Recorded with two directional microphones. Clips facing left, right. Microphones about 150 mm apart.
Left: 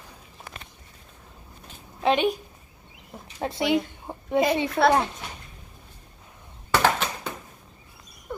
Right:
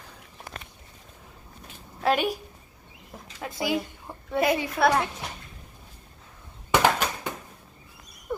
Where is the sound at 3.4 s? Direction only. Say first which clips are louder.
Left 4 dB; 25° left (ahead or behind).